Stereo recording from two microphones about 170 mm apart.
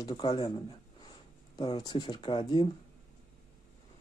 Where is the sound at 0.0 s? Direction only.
25° left (ahead or behind).